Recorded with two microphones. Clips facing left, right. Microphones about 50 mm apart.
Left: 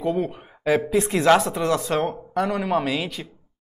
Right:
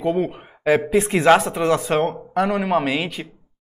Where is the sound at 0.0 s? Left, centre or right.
Right.